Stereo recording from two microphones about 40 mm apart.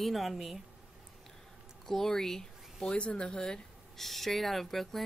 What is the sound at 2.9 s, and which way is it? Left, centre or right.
Speech, left.